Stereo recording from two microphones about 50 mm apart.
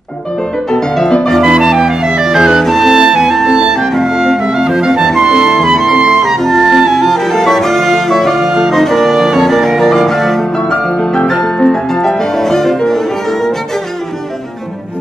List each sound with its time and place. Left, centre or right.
0.7 s music: centre
1.4 s clarinet: centre
2.6 s music: centre